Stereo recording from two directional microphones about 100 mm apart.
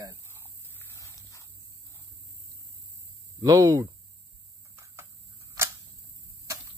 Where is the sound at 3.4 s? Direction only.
40° right (ahead or behind).